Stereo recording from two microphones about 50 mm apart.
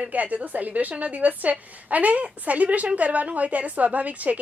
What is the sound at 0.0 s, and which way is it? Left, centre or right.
A woman's voice, right.